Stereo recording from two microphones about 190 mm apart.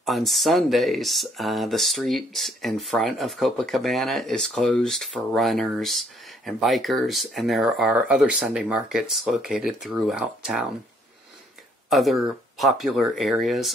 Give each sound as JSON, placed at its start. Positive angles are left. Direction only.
{"t": 0.0, "sound": "speech", "side_deg": 0}
{"t": 11.9, "sound": "speech", "side_deg": 0}